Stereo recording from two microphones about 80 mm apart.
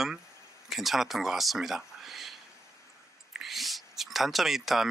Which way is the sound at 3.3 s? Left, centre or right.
Centre.